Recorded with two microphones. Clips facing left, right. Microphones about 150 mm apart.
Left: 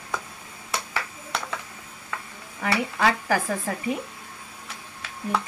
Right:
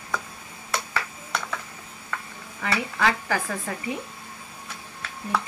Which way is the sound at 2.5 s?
25° left (ahead or behind).